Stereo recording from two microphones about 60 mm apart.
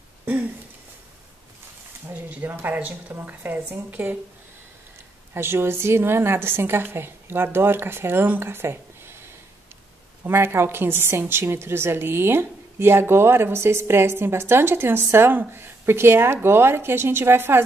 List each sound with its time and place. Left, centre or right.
2.2 s a woman's voice: right
5.3 s a woman's voice: right
10.2 s a woman's voice: right